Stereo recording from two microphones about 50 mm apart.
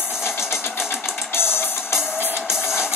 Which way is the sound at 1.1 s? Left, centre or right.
Left.